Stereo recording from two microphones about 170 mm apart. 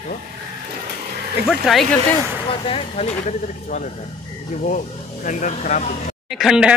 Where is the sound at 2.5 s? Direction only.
35° left (ahead or behind).